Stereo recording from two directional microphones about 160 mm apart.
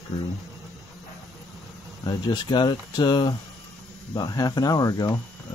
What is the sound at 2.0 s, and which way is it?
Speech, 25° left (ahead or behind).